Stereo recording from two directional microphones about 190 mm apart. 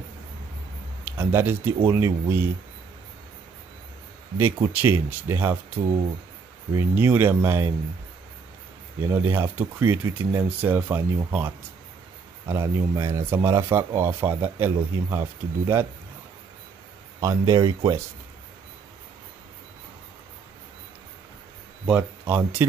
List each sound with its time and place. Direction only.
1.0 s speech: 10° right (ahead or behind)
4.6 s speech: 15° right (ahead or behind)
9.1 s speech: 10° right (ahead or behind)
17.2 s speech: 20° right (ahead or behind)
21.8 s speech: 10° right (ahead or behind)